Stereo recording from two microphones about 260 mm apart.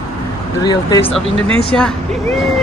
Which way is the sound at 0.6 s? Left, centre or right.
Centre.